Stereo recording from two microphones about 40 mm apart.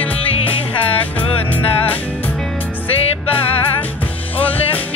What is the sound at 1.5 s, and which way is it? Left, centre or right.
Music, left.